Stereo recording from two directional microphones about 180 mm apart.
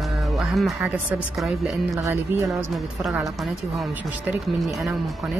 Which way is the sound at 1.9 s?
15° right (ahead or behind).